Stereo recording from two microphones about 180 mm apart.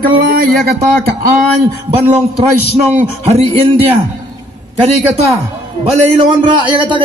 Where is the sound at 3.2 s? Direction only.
30° right (ahead or behind).